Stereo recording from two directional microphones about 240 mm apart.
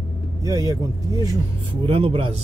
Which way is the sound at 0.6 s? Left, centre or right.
Centre.